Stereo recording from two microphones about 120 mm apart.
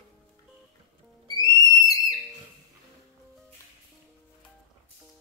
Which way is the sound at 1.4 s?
30° left (ahead or behind).